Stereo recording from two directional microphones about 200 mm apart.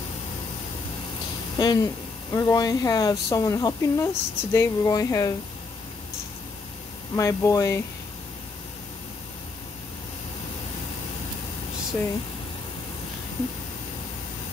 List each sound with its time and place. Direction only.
1.6 s speech: 20° left (ahead or behind)
7.2 s speech: 15° left (ahead or behind)